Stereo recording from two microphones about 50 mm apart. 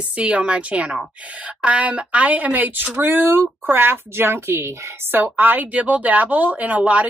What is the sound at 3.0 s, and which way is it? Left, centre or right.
A woman's voice, right.